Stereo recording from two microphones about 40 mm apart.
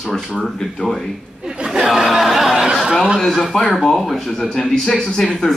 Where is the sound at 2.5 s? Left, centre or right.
Centre.